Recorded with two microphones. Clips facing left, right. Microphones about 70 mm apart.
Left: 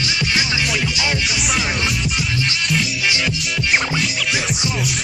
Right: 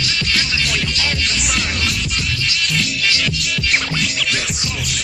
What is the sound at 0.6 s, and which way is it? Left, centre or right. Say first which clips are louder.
Music: left 1 dB; centre.